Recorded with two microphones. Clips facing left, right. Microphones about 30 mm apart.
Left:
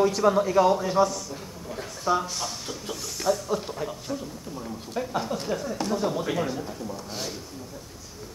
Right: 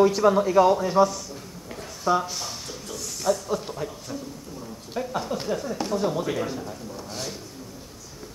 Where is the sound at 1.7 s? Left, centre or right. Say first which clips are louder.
Right 2 dB; centre.